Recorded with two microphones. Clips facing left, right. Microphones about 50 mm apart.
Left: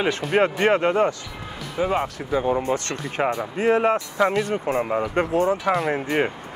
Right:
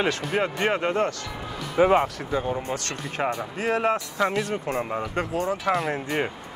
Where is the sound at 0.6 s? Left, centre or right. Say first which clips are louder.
Left 5 dB; centre.